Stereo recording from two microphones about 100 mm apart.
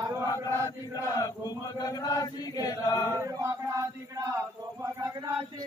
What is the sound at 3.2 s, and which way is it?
Chant, 30° right (ahead or behind).